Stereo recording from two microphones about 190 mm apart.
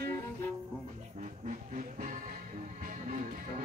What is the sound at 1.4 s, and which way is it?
Music, 45° right (ahead or behind).